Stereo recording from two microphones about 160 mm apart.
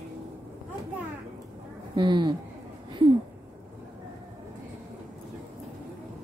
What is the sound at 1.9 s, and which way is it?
Speech, 30° right (ahead or behind).